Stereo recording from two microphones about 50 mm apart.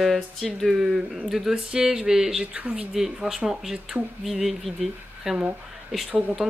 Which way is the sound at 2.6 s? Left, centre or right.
Right.